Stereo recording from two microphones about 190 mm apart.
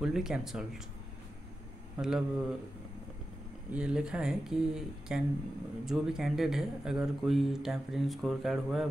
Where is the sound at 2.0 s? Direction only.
5° right (ahead or behind).